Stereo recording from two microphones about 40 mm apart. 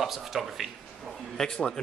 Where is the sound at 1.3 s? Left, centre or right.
Centre.